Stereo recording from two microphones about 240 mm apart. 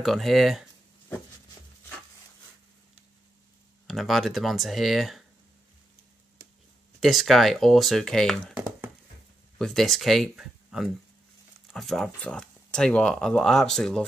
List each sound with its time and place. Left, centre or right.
0.0 s speech: centre
3.8 s speech: centre
7.0 s speech: centre
9.6 s speech: centre